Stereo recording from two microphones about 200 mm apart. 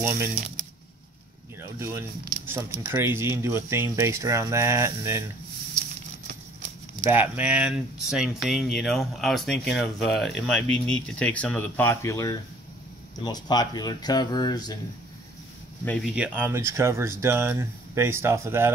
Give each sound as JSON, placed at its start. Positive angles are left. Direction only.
{"t": 0.0, "sound": "speech", "side_deg": -15}
{"t": 1.6, "sound": "speech", "side_deg": -10}
{"t": 7.1, "sound": "speech", "side_deg": -10}
{"t": 15.8, "sound": "speech", "side_deg": 5}
{"t": 16.2, "sound": "speech", "side_deg": -10}